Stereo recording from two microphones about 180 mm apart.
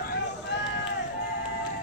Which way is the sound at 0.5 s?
75° left (ahead or behind).